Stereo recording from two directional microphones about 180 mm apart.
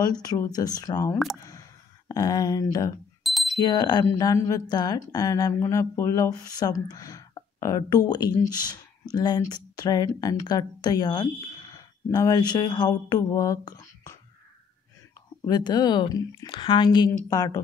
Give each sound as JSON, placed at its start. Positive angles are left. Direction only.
{"t": 0.0, "sound": "speech", "side_deg": 20}
{"t": 1.4, "sound": "a sound", "side_deg": 20}
{"t": 3.5, "sound": "speech", "side_deg": 20}
{"t": 15.4, "sound": "speech", "side_deg": 20}